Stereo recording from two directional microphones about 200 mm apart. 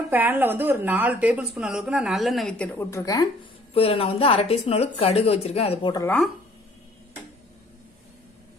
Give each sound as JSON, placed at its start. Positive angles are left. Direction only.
{"t": 0.1, "sound": "a woman's voice", "side_deg": -10}
{"t": 3.7, "sound": "speech", "side_deg": 30}
{"t": 6.0, "sound": "a woman's voice", "side_deg": 0}